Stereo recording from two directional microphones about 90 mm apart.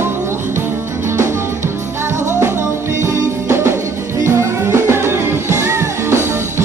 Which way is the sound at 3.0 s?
30° right (ahead or behind).